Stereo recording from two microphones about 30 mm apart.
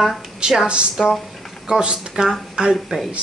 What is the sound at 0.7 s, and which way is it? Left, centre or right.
Speech, right.